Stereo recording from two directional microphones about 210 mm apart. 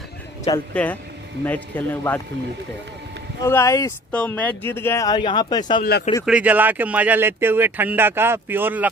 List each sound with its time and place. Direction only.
0.5 s speech: 25° left (ahead or behind)
1.4 s speech: 10° left (ahead or behind)
3.4 s speech: 15° left (ahead or behind)
5.8 s speech: 50° left (ahead or behind)
6.2 s speech: 5° right (ahead or behind)